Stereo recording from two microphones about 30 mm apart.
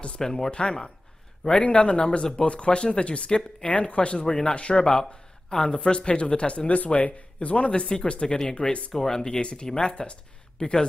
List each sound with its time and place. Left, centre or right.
0.2 s speech: centre
0.5 s speech: left
1.6 s speech: left
2.4 s speech: left
4.8 s speech: left
7.4 s speech: left
8.9 s speech: left